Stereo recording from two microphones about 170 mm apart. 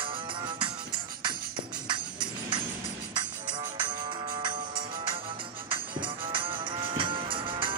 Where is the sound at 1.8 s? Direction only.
25° right (ahead or behind).